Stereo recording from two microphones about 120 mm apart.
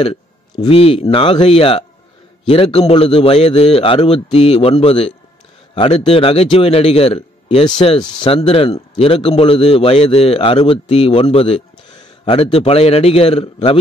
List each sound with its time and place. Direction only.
0.7 s a man's voice: 55° left (ahead or behind)